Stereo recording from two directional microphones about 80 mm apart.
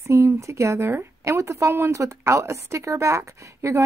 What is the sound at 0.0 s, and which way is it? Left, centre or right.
Speech, right.